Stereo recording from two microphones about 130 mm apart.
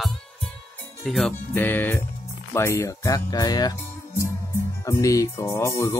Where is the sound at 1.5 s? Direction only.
15° left (ahead or behind).